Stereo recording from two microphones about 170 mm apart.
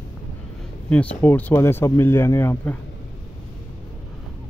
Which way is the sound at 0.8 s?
10° left (ahead or behind).